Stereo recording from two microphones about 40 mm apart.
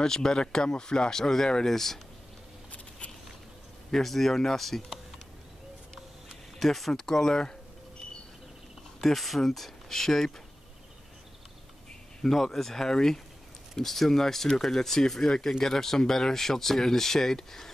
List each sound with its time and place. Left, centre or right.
0.0 s speech: centre
3.9 s speech: centre
6.6 s speech: centre
9.0 s speech: centre
12.2 s speech: centre